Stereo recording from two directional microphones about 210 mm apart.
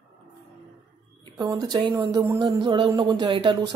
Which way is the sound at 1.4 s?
15° right (ahead or behind).